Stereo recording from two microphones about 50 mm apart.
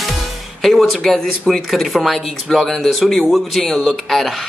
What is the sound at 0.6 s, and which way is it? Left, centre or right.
Speech, centre.